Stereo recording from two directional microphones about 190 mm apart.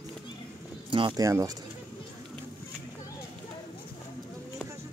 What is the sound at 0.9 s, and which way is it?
Speech, 25° right (ahead or behind).